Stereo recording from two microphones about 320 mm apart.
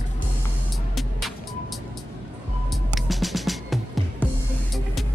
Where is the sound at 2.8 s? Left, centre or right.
Centre.